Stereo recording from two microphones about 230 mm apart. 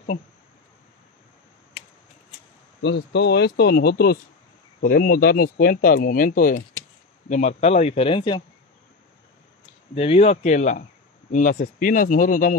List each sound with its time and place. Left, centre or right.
2.8 s speech: left
9.9 s speech: left